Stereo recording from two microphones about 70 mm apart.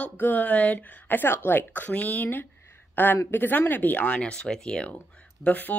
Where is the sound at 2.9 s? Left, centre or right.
Left.